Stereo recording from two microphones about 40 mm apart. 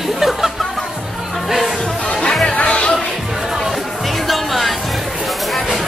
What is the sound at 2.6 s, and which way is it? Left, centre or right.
Music, left.